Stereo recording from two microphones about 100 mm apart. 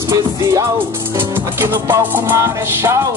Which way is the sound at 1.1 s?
25° right (ahead or behind).